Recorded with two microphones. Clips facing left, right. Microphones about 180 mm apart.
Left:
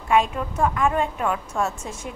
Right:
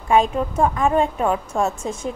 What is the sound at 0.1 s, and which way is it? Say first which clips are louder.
A woman's voice: right 3 dB; 30° right (ahead or behind).